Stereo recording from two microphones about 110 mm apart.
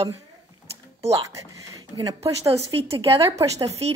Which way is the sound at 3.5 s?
70° right (ahead or behind).